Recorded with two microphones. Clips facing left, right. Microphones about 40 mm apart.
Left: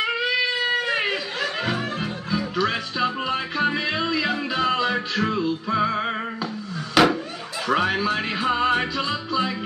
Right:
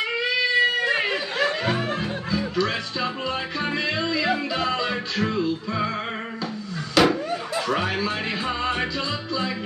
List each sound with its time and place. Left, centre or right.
2.3 s music: centre
7.0 s a sound: centre
7.6 s music: centre